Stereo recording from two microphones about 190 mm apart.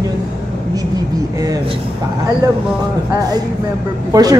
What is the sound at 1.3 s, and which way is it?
Speech, 20° right (ahead or behind).